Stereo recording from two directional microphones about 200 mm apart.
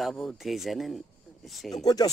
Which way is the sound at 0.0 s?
Centre (ahead or behind).